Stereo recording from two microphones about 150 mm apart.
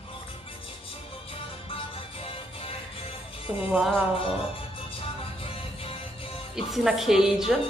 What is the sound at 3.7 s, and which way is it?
Speech, 5° right (ahead or behind).